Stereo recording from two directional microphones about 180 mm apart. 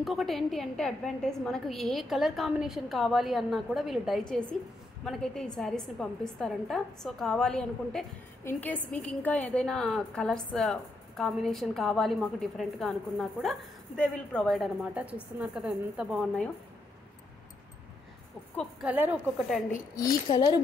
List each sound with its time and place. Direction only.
0.0 s a woman's voice: centre (ahead or behind)
18.6 s a woman's voice: 5° right (ahead or behind)
20.0 s a woman's voice: 20° left (ahead or behind)